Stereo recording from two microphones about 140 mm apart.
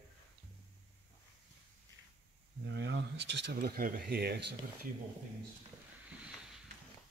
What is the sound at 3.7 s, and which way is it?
Speech, 90° right.